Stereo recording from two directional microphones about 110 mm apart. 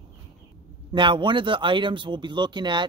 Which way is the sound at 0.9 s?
50° right (ahead or behind).